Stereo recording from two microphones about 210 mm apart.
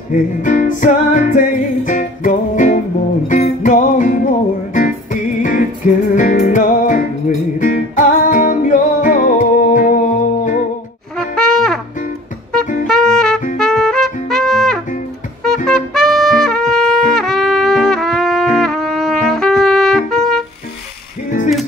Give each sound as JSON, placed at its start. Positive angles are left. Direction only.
{"t": 0.1, "sound": "music", "side_deg": 40}
{"t": 11.1, "sound": "brass instrument", "side_deg": 0}
{"t": 12.8, "sound": "music", "side_deg": 0}